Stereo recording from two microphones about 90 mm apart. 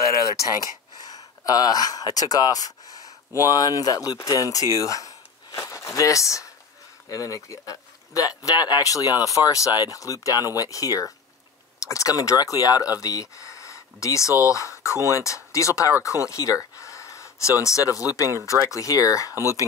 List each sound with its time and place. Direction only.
1.0 s speech: 45° left (ahead or behind)
4.7 s a sound: 40° left (ahead or behind)
7.1 s speech: 40° left (ahead or behind)